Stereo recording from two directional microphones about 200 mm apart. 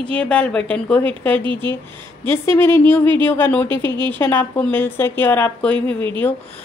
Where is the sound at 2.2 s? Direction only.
10° left (ahead or behind).